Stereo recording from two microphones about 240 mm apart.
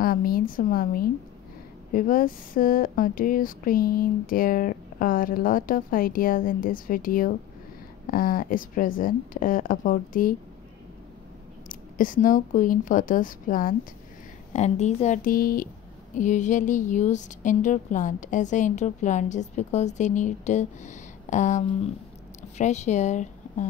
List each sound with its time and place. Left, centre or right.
0.0 s a woman's voice: left
11.7 s a woman's voice: left